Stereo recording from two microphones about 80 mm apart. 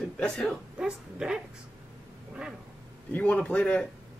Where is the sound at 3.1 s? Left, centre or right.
Centre.